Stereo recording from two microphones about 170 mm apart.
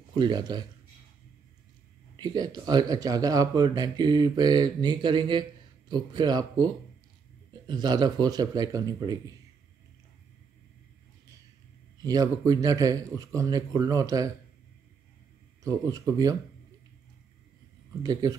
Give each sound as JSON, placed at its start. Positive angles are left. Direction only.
{"t": 0.1, "sound": "speech", "side_deg": -25}
{"t": 2.1, "sound": "speech", "side_deg": -25}
{"t": 12.0, "sound": "speech", "side_deg": -20}
{"t": 15.6, "sound": "speech", "side_deg": -20}
{"t": 18.0, "sound": "speech", "side_deg": -25}